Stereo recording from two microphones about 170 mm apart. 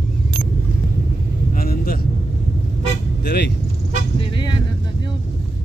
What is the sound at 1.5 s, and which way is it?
Speech, 60° left (ahead or behind).